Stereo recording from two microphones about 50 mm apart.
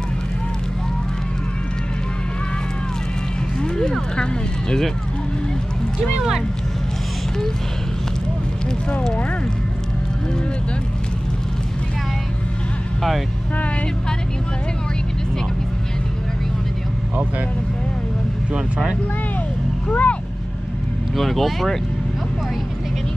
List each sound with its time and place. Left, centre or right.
3.6 s a sound: centre
18.5 s speech: centre
19.9 s speech: left
21.2 s speech: centre